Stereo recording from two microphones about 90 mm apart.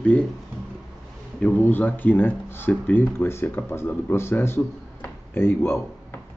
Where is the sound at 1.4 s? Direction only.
20° left (ahead or behind).